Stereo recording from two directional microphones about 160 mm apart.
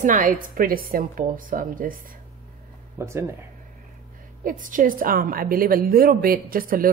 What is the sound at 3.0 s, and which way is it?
Speech, 15° right (ahead or behind).